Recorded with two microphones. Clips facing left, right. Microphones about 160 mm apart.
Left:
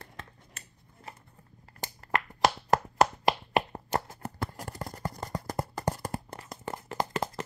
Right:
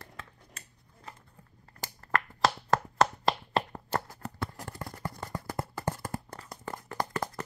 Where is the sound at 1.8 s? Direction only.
20° left (ahead or behind).